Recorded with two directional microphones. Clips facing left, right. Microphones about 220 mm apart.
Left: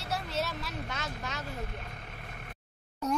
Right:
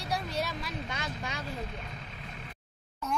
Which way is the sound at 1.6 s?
55° left (ahead or behind).